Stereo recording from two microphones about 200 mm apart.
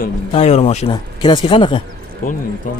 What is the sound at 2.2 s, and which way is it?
Speech, 45° left (ahead or behind).